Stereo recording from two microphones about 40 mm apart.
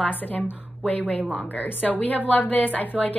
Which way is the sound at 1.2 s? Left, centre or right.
Right.